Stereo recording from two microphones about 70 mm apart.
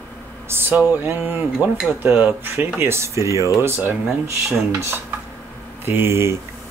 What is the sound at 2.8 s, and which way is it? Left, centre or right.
Speech, right.